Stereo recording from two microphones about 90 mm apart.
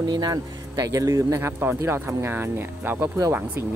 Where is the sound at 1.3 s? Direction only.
25° right (ahead or behind).